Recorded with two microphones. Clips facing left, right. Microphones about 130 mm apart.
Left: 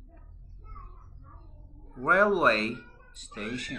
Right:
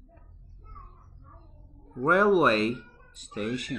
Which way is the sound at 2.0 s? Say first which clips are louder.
Right 2 dB; 10° right (ahead or behind).